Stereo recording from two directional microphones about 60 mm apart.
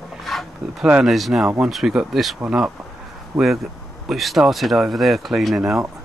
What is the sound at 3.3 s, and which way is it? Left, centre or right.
Speech, right.